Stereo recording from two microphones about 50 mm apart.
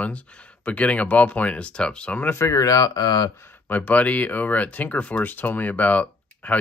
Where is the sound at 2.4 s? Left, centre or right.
Left.